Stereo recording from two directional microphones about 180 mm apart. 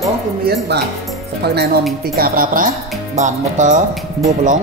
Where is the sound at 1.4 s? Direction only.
65° right (ahead or behind).